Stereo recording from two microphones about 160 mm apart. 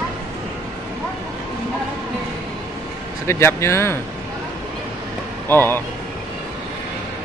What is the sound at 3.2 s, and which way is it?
Speech, 15° left (ahead or behind).